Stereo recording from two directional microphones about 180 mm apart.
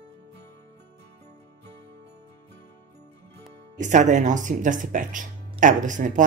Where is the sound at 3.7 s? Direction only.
45° right (ahead or behind).